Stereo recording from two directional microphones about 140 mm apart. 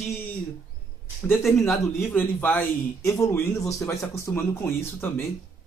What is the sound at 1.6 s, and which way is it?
Speech, 15° left (ahead or behind).